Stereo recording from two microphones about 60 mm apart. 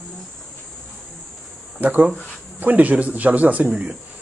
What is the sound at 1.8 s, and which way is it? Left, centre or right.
Speech, right.